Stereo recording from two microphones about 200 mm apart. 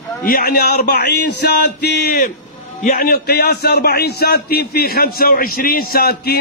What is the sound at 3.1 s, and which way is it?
A man's voice, 55° left (ahead or behind).